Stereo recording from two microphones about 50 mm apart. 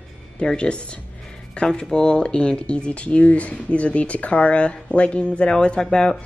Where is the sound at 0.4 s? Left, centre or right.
Centre.